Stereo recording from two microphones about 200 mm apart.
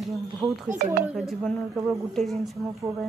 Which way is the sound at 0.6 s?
45° right (ahead or behind).